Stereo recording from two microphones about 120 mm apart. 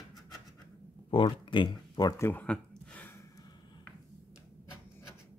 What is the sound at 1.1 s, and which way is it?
Speech, 40° left (ahead or behind).